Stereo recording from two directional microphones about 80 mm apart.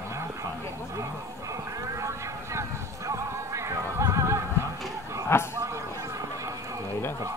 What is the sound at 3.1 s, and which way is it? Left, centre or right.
Music, right.